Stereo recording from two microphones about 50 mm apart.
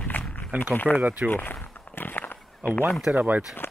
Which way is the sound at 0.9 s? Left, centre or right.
Right.